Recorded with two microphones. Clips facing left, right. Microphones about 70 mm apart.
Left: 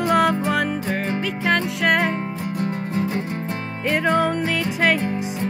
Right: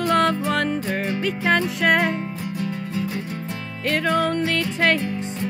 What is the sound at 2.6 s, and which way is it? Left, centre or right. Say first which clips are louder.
Music: left 3 dB; left.